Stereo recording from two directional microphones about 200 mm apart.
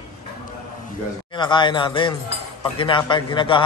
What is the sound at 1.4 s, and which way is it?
A man's voice, 25° left (ahead or behind).